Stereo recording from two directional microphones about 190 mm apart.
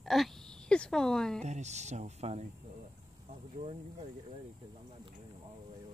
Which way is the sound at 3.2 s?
35° right (ahead or behind).